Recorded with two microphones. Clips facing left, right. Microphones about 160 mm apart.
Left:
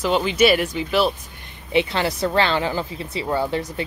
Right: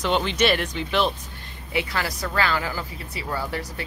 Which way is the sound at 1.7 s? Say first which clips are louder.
Left 7 dB; 25° left (ahead or behind).